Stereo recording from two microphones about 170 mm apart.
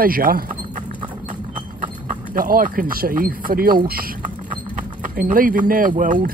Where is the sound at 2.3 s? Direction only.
55° right (ahead or behind).